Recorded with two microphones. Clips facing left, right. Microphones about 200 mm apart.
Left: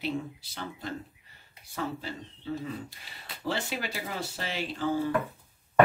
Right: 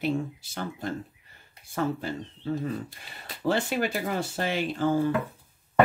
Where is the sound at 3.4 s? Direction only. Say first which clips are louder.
Right 7 dB; 50° right (ahead or behind).